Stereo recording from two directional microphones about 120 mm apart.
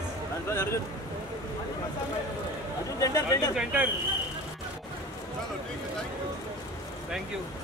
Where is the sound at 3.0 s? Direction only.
30° left (ahead or behind).